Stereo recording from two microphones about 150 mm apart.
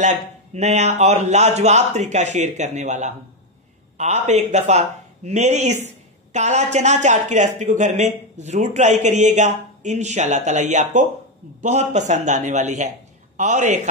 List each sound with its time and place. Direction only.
0.0 s speech: 50° right (ahead or behind)